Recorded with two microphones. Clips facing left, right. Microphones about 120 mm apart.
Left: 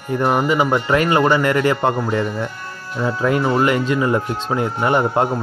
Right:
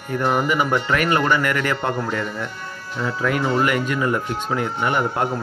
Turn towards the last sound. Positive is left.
turn(degrees=30)  # may be behind; listen again after turning